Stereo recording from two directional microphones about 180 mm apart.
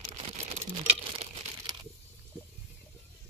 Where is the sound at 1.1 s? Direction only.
30° right (ahead or behind).